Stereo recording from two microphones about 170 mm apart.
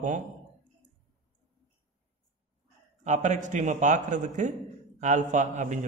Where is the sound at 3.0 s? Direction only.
45° right (ahead or behind).